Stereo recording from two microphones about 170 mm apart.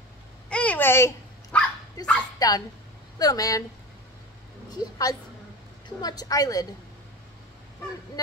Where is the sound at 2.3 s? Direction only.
20° left (ahead or behind).